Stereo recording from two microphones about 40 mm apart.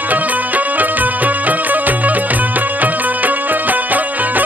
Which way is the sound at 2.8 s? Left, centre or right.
Right.